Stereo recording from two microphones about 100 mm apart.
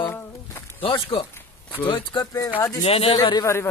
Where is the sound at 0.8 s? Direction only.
60° left (ahead or behind).